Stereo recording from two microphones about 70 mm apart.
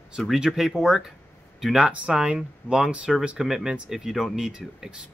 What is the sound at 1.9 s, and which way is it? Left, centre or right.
Speech, right.